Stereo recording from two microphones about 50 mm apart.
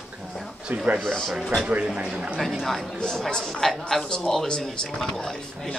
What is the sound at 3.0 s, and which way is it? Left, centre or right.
Speech, centre.